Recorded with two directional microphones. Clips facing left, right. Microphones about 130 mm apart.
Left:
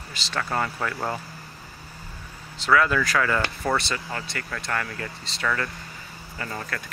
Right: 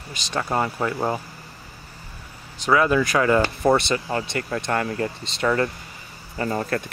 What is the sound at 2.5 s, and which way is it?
Speech, 20° right (ahead or behind).